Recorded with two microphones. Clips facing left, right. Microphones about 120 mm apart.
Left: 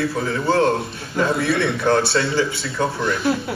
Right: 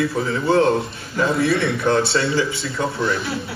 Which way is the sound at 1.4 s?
60° left (ahead or behind).